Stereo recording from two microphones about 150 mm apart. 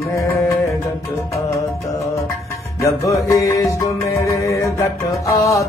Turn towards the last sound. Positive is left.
turn(degrees=20)  # may be behind; listen again after turning